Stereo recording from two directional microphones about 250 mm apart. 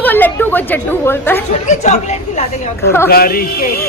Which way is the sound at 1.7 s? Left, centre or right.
Left.